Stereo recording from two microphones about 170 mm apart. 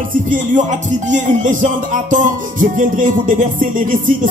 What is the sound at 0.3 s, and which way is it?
Music, 45° right (ahead or behind).